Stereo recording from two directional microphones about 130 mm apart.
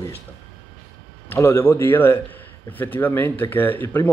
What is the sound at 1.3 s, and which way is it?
Speech, 20° left (ahead or behind).